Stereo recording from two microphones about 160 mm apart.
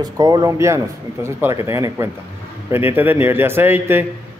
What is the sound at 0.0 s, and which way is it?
A man's voice, 25° right (ahead or behind).